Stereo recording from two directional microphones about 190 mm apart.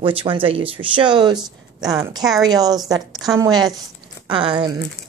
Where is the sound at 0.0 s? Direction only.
25° right (ahead or behind).